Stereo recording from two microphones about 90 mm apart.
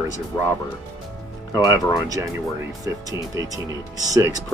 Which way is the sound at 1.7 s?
35° right (ahead or behind).